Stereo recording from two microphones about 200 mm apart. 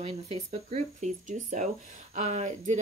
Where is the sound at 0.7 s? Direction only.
35° right (ahead or behind).